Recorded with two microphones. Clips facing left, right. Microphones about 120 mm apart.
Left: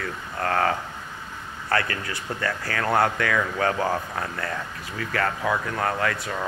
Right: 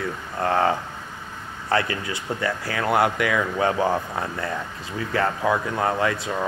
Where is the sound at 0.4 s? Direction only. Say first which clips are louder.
Right 3 dB; 20° right (ahead or behind).